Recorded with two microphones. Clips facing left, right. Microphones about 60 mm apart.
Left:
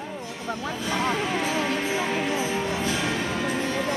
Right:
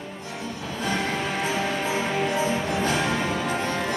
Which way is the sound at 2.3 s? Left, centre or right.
Right.